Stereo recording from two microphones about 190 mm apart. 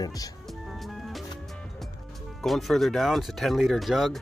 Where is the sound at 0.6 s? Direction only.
Centre (ahead or behind).